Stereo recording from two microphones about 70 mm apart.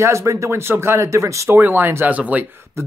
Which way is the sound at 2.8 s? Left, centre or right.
Right.